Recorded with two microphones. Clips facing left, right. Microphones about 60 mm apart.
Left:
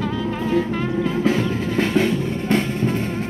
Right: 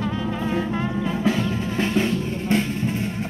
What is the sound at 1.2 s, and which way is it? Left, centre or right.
Music, left.